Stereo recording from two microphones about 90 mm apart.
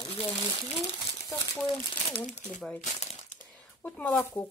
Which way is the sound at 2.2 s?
15° left (ahead or behind).